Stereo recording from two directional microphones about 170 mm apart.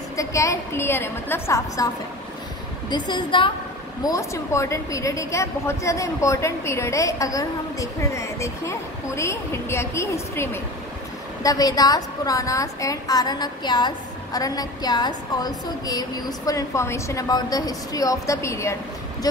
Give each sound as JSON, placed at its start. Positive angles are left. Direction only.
{"t": 0.1, "sound": "a woman's voice", "side_deg": 20}
{"t": 2.9, "sound": "a woman's voice", "side_deg": 30}
{"t": 4.0, "sound": "a woman's voice", "side_deg": 20}